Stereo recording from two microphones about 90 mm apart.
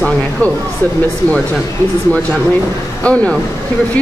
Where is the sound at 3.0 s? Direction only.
10° left (ahead or behind).